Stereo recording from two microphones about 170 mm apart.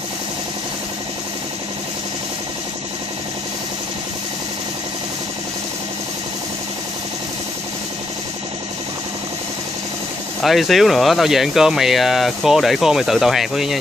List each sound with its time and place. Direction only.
10.4 s speech: centre (ahead or behind)